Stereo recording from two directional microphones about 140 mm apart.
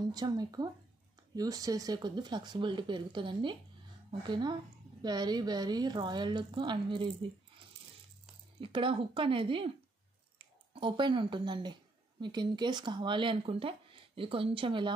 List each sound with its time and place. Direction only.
0.1 s speech: 30° right (ahead or behind)
8.5 s a woman's voice: 40° right (ahead or behind)